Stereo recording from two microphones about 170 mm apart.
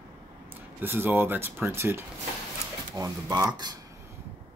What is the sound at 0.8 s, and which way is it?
Speech, 10° right (ahead or behind).